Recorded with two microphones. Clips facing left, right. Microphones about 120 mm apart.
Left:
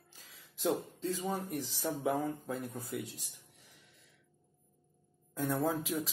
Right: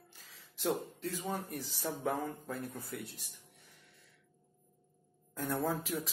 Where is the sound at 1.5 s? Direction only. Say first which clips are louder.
Left 4 dB; 90° left.